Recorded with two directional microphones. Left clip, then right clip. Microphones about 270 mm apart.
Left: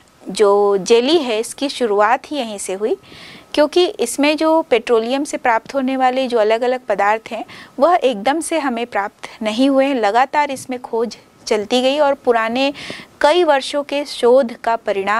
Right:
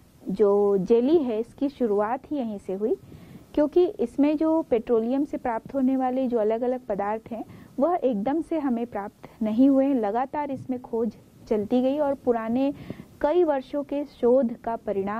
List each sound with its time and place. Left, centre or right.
0.5 s speech: left
0.8 s a woman's voice: centre
10.8 s speech: centre
11.1 s a woman's voice: centre